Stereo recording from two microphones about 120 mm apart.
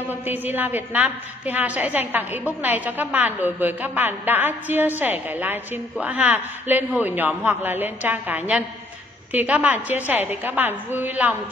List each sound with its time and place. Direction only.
0.1 s a woman's voice: 15° right (ahead or behind)